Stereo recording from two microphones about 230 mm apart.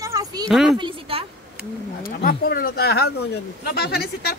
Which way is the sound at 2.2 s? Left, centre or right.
Left.